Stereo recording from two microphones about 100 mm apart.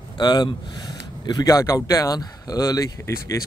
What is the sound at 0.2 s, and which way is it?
Speech, 45° left (ahead or behind).